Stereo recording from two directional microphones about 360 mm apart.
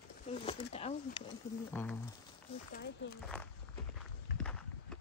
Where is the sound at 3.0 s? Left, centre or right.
Left.